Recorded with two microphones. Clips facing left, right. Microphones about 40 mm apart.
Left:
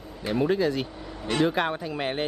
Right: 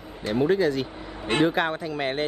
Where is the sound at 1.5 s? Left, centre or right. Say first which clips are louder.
Right 1 dB; centre.